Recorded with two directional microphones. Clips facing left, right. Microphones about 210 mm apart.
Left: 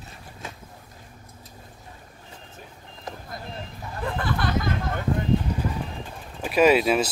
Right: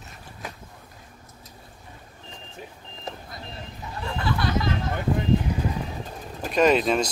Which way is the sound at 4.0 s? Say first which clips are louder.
Even; 50° left (ahead or behind).